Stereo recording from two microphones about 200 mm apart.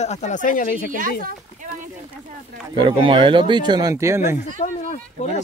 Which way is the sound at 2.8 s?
25° right (ahead or behind).